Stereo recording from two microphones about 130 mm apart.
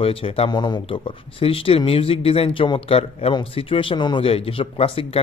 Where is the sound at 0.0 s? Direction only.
45° left (ahead or behind).